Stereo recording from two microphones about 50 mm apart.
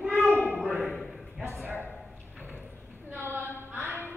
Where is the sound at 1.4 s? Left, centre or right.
Right.